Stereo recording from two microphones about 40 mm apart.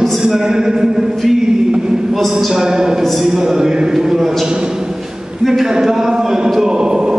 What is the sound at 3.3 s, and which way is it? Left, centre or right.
A man's voice, centre.